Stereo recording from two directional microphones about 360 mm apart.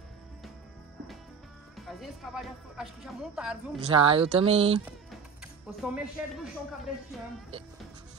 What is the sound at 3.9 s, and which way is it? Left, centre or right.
Speech, centre.